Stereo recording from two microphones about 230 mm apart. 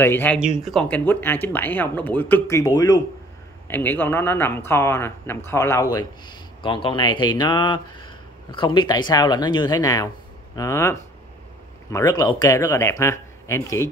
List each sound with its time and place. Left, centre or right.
0.0 s speech: centre